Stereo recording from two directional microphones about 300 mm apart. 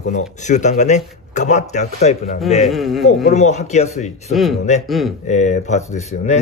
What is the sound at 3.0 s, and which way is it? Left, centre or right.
Speech, left.